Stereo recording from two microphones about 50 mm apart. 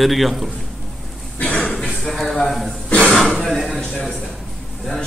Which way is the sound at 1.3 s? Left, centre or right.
Left.